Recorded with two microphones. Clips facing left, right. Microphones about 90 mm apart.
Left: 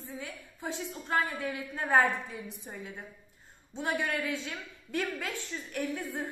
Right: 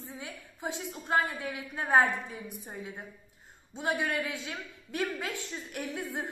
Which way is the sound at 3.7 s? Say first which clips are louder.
Right 1 dB; 10° right (ahead or behind).